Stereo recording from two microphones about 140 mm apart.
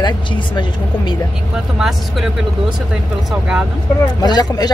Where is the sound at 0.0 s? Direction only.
35° left (ahead or behind).